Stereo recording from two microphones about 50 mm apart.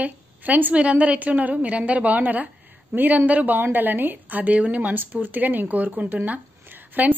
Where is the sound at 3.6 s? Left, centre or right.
Right.